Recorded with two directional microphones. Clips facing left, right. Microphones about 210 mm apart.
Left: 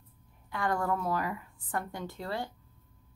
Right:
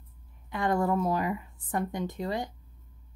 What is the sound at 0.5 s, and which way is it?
Speech, 20° right (ahead or behind).